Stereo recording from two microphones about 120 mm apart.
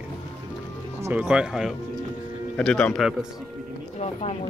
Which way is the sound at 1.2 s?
5° right (ahead or behind).